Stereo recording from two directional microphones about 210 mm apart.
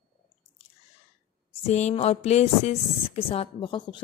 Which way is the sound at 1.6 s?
30° left (ahead or behind).